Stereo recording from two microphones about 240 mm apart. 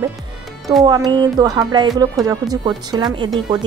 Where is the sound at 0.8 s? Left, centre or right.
Centre.